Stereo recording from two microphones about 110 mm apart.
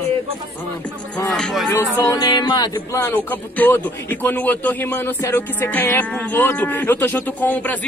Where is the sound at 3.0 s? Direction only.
15° left (ahead or behind).